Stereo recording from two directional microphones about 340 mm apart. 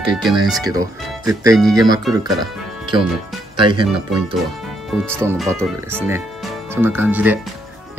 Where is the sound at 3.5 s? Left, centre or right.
Centre.